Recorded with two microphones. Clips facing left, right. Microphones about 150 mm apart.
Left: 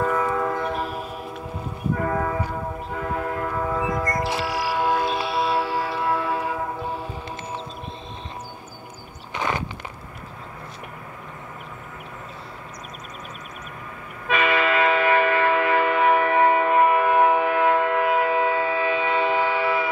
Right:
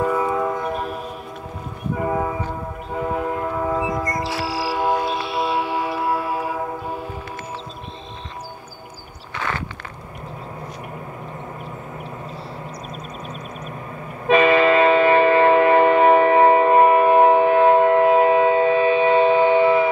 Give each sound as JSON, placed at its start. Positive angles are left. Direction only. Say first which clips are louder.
{"t": 0.0, "sound": "a sound", "louder": "right 2 dB", "side_deg": -10}
{"t": 0.6, "sound": "a sound", "louder": "right 1 dB", "side_deg": 0}
{"t": 2.0, "sound": "train", "louder": "right 3 dB", "side_deg": -15}
{"t": 4.5, "sound": "music", "louder": "right 4 dB", "side_deg": -30}
{"t": 5.1, "sound": "music", "louder": "even", "side_deg": 0}
{"t": 5.5, "sound": "music", "louder": "right 1 dB", "side_deg": -20}
{"t": 14.2, "sound": "train", "louder": "right 7 dB", "side_deg": -25}